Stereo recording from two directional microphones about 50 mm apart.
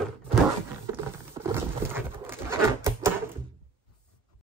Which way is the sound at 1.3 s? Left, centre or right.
Right.